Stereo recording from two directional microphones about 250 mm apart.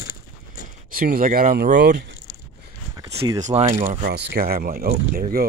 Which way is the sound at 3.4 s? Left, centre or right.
Right.